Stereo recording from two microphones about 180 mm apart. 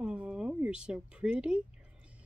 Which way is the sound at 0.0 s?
5° right (ahead or behind).